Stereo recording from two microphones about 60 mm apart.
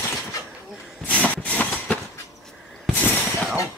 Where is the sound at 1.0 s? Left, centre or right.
Left.